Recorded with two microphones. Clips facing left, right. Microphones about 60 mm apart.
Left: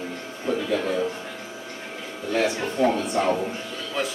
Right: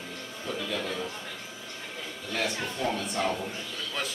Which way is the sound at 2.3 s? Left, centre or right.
Left.